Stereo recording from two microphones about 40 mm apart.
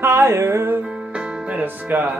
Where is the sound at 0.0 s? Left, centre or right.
Right.